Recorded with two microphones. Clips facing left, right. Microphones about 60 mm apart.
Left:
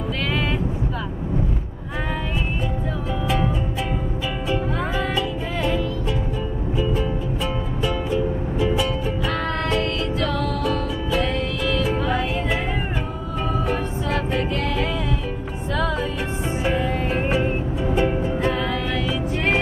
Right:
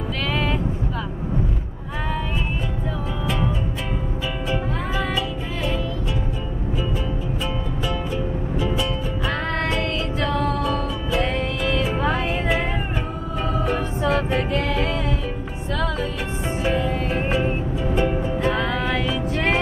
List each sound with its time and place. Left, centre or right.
4.5 s music: centre
10.2 s music: right
15.7 s music: centre
18.8 s music: right
19.0 s music: centre